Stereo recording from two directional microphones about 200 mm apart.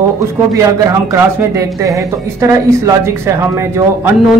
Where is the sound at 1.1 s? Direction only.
15° right (ahead or behind).